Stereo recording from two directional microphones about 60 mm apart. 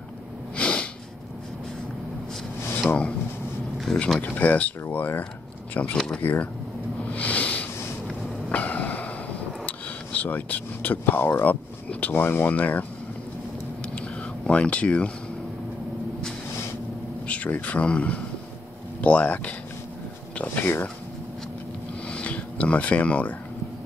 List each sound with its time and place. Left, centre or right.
0.6 s snort: centre
2.8 s speech: left
3.9 s speech: centre
4.2 s speech: left
5.9 s speech: centre
7.1 s a sound: left
9.7 s speech: left
13.9 s a sound: centre
17.3 s speech: left
20.6 s speech: left
22.0 s a sound: left